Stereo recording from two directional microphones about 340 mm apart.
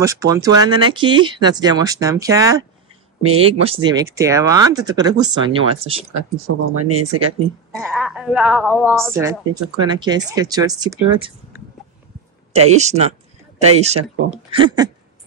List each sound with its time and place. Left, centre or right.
0.0 s a woman's voice: centre
6.1 s speech: right
7.7 s a woman's voice: centre
12.5 s a woman's voice: centre